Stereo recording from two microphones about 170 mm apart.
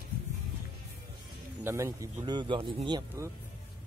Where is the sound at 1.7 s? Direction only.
15° right (ahead or behind).